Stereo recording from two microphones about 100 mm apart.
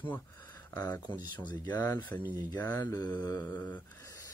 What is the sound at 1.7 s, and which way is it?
Speech, 30° left (ahead or behind).